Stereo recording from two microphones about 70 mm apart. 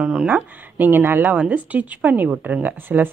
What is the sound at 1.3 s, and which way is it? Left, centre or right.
Speech, right.